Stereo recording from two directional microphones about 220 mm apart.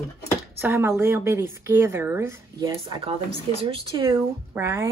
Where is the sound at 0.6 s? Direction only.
10° right (ahead or behind).